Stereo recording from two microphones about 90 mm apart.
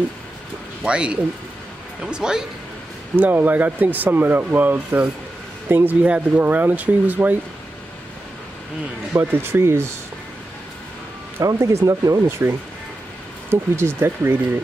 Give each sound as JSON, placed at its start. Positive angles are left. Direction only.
{"t": 0.8, "sound": "speech", "side_deg": -10}
{"t": 3.2, "sound": "speech", "side_deg": -20}
{"t": 9.1, "sound": "speech", "side_deg": -25}
{"t": 11.4, "sound": "speech", "side_deg": -30}